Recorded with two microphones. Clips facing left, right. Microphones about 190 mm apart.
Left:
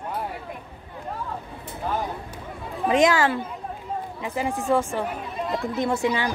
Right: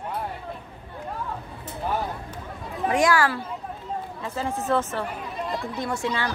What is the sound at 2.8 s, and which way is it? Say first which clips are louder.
Speech: left 2 dB; 20° left (ahead or behind).